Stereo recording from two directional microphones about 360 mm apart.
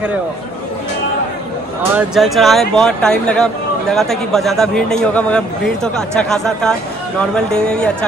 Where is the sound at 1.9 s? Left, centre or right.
Centre.